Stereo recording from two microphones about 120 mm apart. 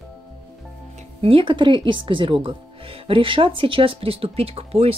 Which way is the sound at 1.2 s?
45° right (ahead or behind).